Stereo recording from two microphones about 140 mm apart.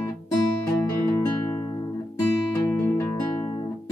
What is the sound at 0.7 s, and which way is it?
Music, 20° left (ahead or behind).